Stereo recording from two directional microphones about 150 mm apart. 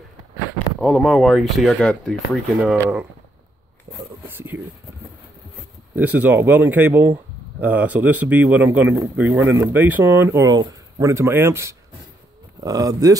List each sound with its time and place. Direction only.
0.7 s speech: 5° left (ahead or behind)
2.8 s speech: 10° right (ahead or behind)
5.9 s speech: 10° right (ahead or behind)